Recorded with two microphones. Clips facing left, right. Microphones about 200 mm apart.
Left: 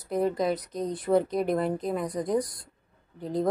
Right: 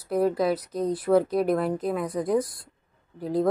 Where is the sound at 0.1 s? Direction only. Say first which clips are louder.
Right 3 dB; 5° right (ahead or behind).